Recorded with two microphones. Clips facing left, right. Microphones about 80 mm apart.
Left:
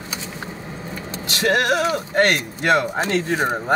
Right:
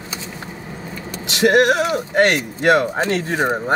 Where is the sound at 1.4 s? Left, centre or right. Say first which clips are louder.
Right 4 dB; centre.